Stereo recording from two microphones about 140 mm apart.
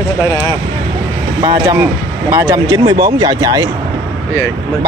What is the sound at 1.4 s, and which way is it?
Speech, 30° right (ahead or behind).